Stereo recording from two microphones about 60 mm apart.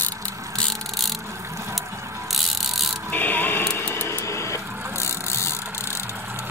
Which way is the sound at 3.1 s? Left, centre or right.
Left.